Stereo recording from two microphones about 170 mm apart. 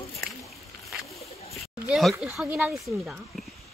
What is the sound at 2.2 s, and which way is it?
Speech, centre (ahead or behind).